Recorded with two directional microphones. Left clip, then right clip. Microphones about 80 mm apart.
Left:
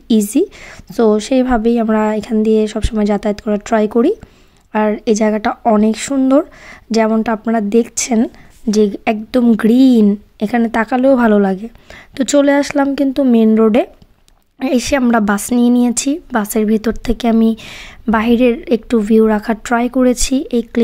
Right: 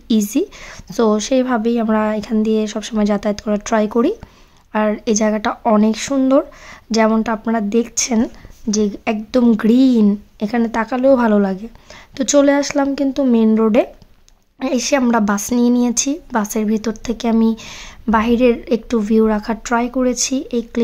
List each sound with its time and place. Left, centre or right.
0.1 s a woman's voice: left
5.6 s speech: centre
5.9 s a woman's voice: left